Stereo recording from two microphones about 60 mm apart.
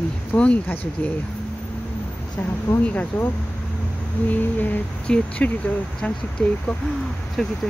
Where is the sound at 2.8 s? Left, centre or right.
Left.